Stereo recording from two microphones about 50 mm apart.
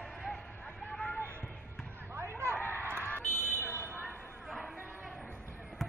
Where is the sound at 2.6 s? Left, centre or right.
Right.